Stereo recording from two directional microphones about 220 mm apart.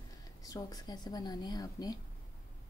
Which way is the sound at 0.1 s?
15° left (ahead or behind).